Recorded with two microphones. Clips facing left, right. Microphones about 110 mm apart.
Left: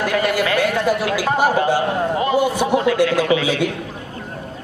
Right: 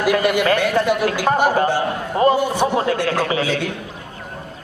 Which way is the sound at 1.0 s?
45° right (ahead or behind).